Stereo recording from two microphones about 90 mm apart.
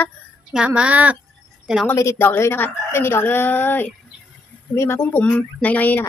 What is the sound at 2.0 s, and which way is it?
A woman's voice, 30° left (ahead or behind).